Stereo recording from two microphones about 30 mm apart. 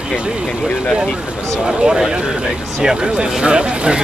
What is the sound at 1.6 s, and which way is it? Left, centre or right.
Speech, right.